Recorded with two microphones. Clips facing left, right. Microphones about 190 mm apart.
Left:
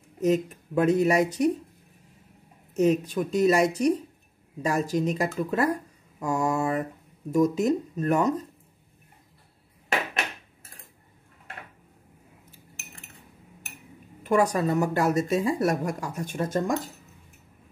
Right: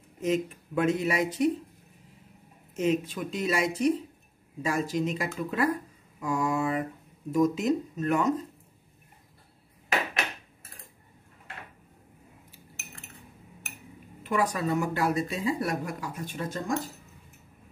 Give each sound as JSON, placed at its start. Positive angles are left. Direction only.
{"t": 0.2, "sound": "speech", "side_deg": 40}
{"t": 2.7, "sound": "speech", "side_deg": 40}
{"t": 14.2, "sound": "speech", "side_deg": 45}